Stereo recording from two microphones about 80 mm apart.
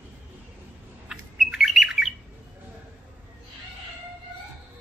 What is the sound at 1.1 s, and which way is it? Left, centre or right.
Bird, centre.